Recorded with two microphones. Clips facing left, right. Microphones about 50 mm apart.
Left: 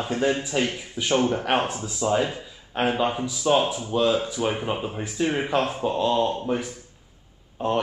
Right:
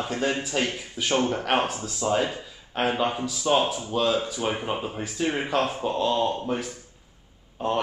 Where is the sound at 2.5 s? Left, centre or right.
Centre.